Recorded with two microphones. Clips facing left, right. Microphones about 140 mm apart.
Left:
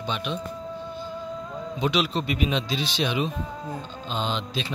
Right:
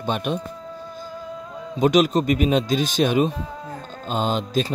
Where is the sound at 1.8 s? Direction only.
45° right (ahead or behind).